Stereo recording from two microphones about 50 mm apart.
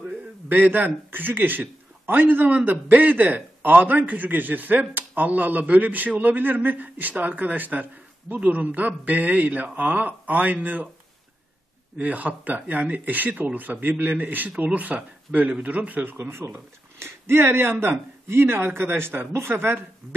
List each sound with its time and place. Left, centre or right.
0.0 s a man's voice: right
12.0 s a man's voice: right
16.2 s speech: right